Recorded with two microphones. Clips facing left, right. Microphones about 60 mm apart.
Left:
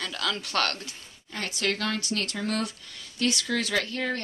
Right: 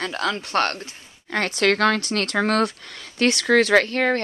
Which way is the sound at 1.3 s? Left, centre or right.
Right.